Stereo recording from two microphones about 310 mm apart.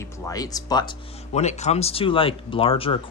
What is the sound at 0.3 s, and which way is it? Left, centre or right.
Speech, centre.